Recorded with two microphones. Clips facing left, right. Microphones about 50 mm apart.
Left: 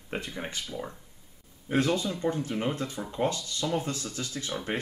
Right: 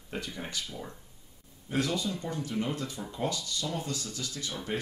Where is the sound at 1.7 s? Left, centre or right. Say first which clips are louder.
Left 4 dB; left.